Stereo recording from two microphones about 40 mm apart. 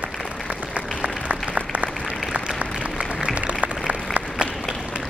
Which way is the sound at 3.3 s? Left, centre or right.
Right.